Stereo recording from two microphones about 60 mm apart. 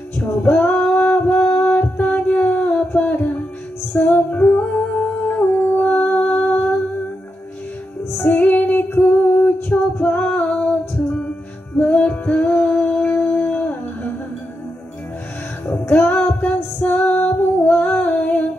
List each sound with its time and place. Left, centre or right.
0.2 s female singing: left
3.9 s music: left
8.2 s music: left
9.7 s a capella: centre
10.3 s female singing: left
11.7 s music: left
16.0 s female singing: left